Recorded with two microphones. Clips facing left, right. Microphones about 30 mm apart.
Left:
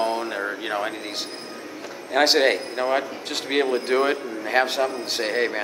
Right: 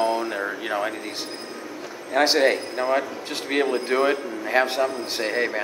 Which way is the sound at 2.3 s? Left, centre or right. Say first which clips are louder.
Right 1 dB; left.